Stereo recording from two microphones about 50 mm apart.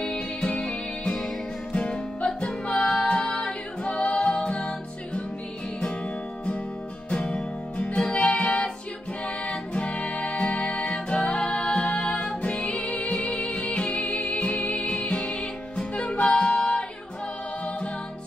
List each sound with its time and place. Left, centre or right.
0.0 s music: centre
7.1 s music: left